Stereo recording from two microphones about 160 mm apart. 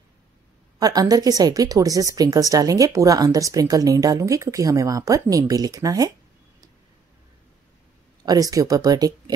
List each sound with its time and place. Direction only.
0.7 s speech: 25° right (ahead or behind)
8.3 s speech: 20° right (ahead or behind)